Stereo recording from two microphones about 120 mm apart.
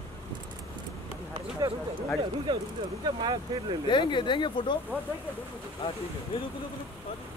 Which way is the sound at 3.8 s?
40° left (ahead or behind).